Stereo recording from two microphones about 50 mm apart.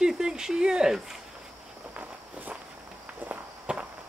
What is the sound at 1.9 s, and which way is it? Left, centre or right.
Walk, right.